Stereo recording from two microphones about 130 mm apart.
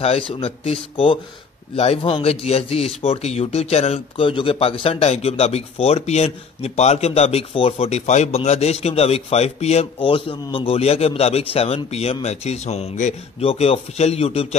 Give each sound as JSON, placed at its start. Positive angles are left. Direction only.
{"t": 0.0, "sound": "a man's voice", "side_deg": 50}
{"t": 13.4, "sound": "a man's voice", "side_deg": 50}